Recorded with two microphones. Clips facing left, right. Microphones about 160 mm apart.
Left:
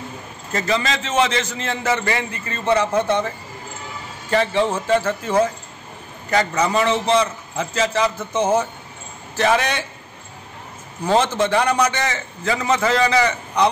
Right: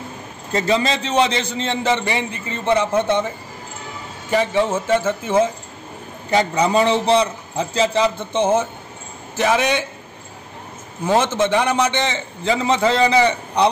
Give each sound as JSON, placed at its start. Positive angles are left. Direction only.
{"t": 0.5, "sound": "a man's voice", "side_deg": -25}
{"t": 4.3, "sound": "a man's voice", "side_deg": -15}
{"t": 6.7, "sound": "a man's voice", "side_deg": -30}
{"t": 9.4, "sound": "a man's voice", "side_deg": -15}
{"t": 11.3, "sound": "a man's voice", "side_deg": -20}